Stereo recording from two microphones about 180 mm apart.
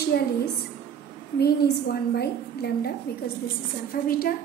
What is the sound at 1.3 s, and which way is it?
A woman's voice, 60° left (ahead or behind).